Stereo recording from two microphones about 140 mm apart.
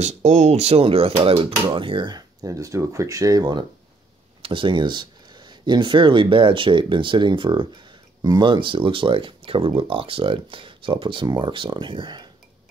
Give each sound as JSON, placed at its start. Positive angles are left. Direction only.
{"t": 0.0, "sound": "speech", "side_deg": -55}